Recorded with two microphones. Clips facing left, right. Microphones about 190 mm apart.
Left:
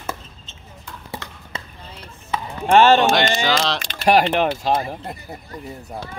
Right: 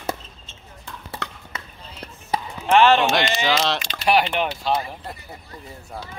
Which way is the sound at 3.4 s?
5° right (ahead or behind).